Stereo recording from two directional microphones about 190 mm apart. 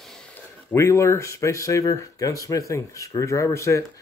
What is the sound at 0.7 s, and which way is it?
Speech, 15° left (ahead or behind).